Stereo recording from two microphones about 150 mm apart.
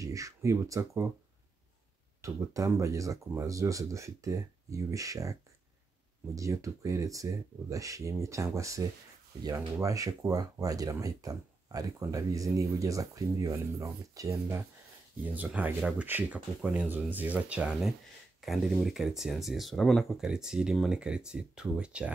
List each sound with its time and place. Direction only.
0.0 s speech: 20° right (ahead or behind)
2.2 s speech: 20° right (ahead or behind)